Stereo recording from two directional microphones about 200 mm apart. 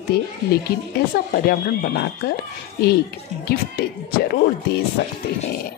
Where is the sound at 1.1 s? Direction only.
50° left (ahead or behind).